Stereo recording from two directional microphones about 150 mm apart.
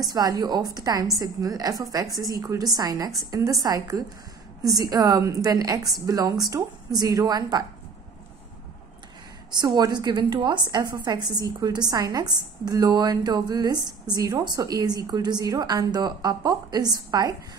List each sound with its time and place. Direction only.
0.0 s a woman's voice: 25° right (ahead or behind)
9.5 s a woman's voice: 25° right (ahead or behind)